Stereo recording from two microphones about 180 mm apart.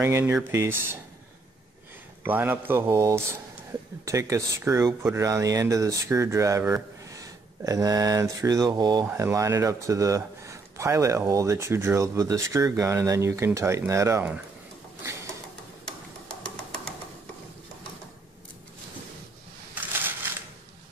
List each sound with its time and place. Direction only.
0.0 s speech: 15° right (ahead or behind)
2.2 s speech: 10° right (ahead or behind)
16.4 s music: 5° left (ahead or behind)